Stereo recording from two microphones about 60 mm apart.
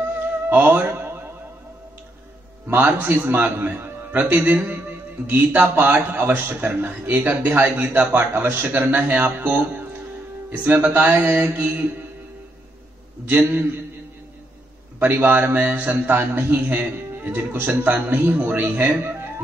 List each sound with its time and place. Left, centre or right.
0.5 s a man's voice: right
0.9 s a sound: right
2.7 s a man's voice: right
4.1 s a man's voice: right
13.2 s a man's voice: right
15.0 s a man's voice: right
17.7 s a man's voice: right